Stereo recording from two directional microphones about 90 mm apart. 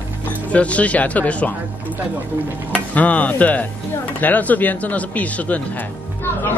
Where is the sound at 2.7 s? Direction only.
15° left (ahead or behind).